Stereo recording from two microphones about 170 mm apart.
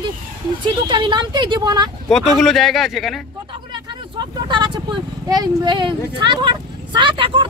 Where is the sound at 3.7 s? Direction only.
25° right (ahead or behind).